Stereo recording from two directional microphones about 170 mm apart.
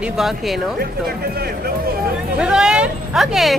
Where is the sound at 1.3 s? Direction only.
60° right (ahead or behind).